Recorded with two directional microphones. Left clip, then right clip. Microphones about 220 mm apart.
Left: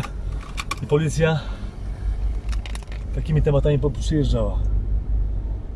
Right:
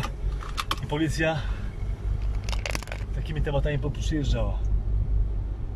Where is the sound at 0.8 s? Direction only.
20° left (ahead or behind).